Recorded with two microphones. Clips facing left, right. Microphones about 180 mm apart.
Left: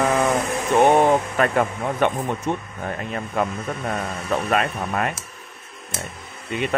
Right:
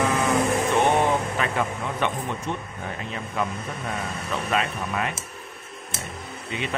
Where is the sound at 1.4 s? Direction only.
50° left (ahead or behind).